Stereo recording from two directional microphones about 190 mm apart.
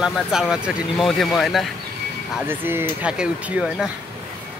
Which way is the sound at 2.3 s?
10° right (ahead or behind).